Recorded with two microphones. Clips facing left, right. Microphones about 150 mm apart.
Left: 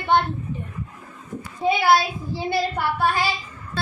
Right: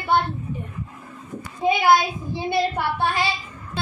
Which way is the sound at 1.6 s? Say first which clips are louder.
Right 1 dB; 15° right (ahead or behind).